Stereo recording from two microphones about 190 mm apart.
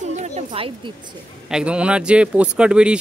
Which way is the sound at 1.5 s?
5° right (ahead or behind).